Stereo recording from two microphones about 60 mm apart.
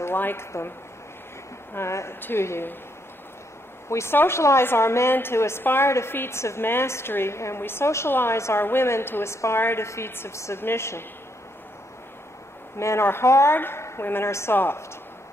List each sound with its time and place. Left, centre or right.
0.0 s a woman's voice: left
2.1 s speech: left
2.4 s a woman's voice: left
3.9 s a woman's voice: left
4.4 s a woman's voice: left
9.6 s a woman's voice: left
12.7 s a woman's voice: left